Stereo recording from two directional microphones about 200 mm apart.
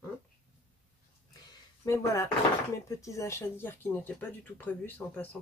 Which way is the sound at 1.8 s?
15° left (ahead or behind).